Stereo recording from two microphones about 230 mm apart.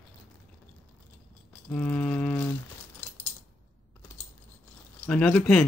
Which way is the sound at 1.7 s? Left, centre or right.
Centre.